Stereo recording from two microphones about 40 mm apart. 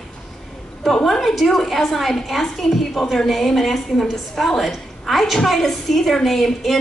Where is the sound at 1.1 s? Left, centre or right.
Centre.